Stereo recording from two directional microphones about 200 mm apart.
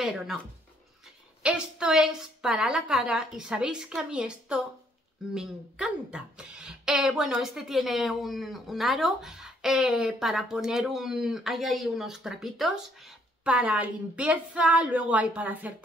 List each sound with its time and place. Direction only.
0.0 s speech: centre (ahead or behind)
1.4 s a woman's voice: 5° right (ahead or behind)